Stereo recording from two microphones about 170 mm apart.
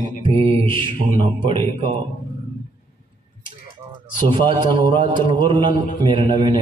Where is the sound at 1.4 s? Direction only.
30° right (ahead or behind).